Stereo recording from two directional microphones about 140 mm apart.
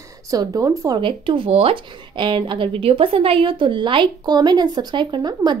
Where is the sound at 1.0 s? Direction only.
40° right (ahead or behind).